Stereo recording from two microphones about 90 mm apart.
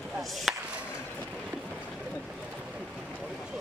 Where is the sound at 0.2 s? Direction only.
Centre (ahead or behind).